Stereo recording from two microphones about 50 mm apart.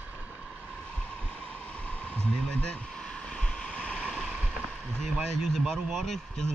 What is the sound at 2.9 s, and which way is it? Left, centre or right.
Vehicle, centre.